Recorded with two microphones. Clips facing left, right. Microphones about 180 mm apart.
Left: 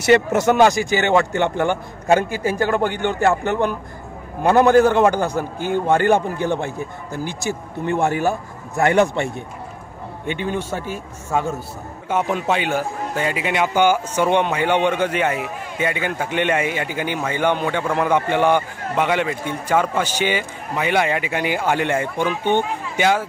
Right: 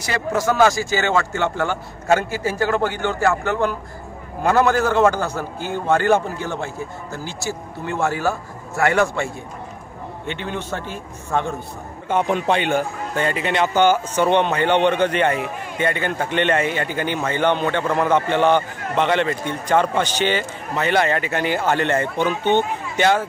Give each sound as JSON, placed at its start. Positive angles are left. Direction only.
{"t": 0.0, "sound": "a man's voice", "side_deg": 20}